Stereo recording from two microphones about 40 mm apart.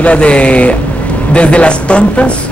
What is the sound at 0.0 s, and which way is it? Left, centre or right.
A man's voice, left.